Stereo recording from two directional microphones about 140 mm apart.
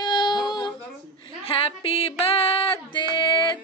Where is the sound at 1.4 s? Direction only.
40° left (ahead or behind).